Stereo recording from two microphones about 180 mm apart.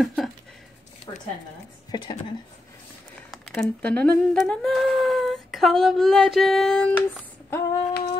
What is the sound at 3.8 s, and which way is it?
Humming, 5° left (ahead or behind).